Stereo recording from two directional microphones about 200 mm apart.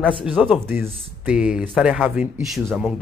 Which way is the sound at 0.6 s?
10° right (ahead or behind).